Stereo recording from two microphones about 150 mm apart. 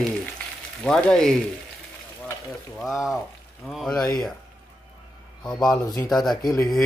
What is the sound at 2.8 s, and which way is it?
Speech, centre (ahead or behind).